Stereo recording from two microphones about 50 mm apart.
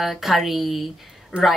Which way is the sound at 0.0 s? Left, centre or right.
Centre.